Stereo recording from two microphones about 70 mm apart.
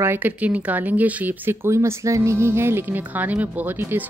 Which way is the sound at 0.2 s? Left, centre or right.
Right.